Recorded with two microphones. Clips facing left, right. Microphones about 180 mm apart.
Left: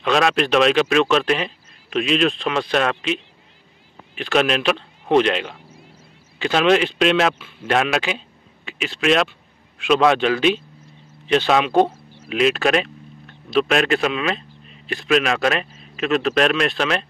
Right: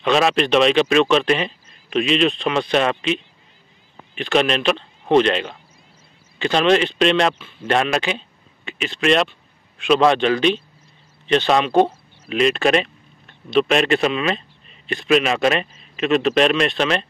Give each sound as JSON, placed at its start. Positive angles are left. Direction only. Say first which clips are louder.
{"t": 0.0, "sound": "speech", "louder": "right 1 dB", "side_deg": 0}